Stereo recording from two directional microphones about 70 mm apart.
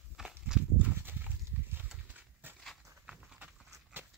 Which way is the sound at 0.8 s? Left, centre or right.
Right.